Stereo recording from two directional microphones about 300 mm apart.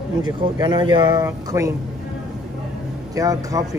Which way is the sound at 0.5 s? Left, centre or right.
Centre.